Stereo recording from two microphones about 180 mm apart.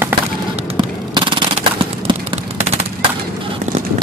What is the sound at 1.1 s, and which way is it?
Machine gun, 25° right (ahead or behind).